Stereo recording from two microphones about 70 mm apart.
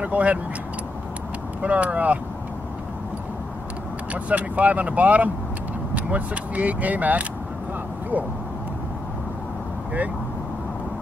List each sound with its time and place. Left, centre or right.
0.0 s speech: right
1.6 s speech: centre
4.1 s speech: centre